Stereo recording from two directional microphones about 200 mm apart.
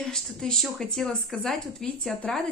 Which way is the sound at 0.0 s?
Centre (ahead or behind).